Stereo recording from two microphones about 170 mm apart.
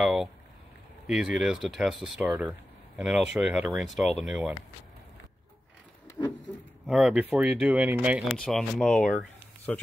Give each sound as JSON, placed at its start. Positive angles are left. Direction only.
{"t": 0.0, "sound": "speech", "side_deg": 0}
{"t": 6.2, "sound": "a sound", "side_deg": 15}
{"t": 6.9, "sound": "speech", "side_deg": -5}